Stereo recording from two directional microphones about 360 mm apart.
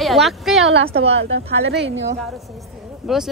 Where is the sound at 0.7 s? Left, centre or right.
Right.